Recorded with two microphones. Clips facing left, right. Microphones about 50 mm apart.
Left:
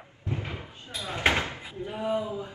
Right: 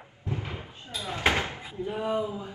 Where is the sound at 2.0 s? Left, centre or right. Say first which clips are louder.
Even; right.